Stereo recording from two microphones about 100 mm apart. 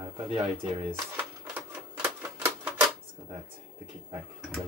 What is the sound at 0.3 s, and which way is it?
Speech, 65° right (ahead or behind).